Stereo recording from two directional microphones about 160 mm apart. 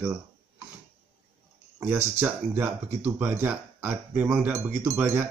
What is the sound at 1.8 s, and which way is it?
Speech, 10° right (ahead or behind).